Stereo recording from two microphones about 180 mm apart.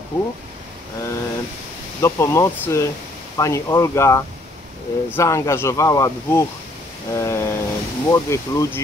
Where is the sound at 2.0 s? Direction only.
15° left (ahead or behind).